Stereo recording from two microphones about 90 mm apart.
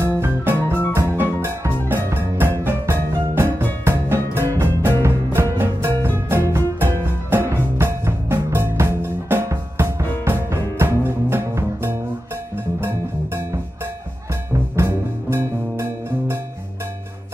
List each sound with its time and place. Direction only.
0.0 s music: 30° right (ahead or behind)
14.5 s music: 30° right (ahead or behind)